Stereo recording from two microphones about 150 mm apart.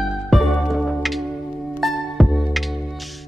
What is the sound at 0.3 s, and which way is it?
Music, centre (ahead or behind).